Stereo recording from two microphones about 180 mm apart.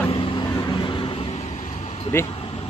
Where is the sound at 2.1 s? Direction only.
15° left (ahead or behind).